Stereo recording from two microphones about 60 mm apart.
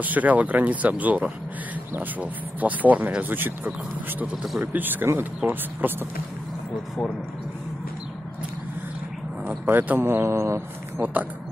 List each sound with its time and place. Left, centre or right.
0.0 s speech: right
4.4 s speech: centre
4.7 s speech: right
9.7 s speech: right
10.2 s speech: right